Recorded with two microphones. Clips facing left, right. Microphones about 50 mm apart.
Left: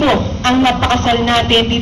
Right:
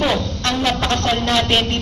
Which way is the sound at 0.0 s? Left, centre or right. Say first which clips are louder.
Left 6 dB; left.